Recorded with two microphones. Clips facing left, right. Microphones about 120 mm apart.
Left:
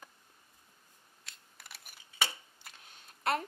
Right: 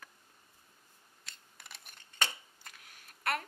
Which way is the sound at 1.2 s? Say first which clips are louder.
Even; centre (ahead or behind).